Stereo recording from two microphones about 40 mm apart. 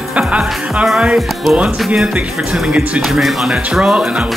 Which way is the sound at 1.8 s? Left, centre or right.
Centre.